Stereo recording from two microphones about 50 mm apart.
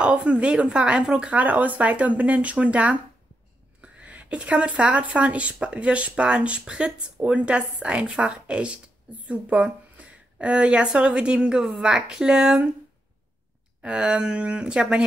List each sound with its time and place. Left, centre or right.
0.0 s speech: right
3.8 s a sound: right
4.3 s a woman's voice: right
13.8 s speech: centre